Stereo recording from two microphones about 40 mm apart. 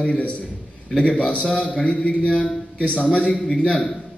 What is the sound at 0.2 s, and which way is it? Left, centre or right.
Speech, left.